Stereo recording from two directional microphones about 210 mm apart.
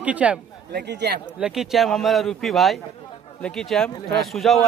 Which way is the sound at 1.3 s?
Centre (ahead or behind).